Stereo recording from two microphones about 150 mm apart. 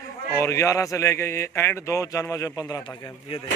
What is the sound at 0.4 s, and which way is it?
A man's voice, 20° left (ahead or behind).